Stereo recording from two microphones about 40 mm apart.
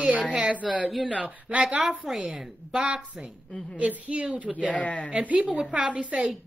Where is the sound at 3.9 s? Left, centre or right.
Right.